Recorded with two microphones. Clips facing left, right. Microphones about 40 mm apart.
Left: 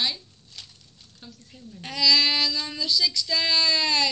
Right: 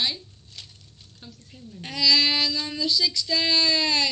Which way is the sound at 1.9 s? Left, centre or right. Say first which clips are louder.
Even; right.